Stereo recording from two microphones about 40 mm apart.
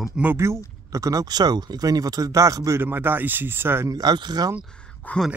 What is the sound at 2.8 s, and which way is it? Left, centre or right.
Speech, right.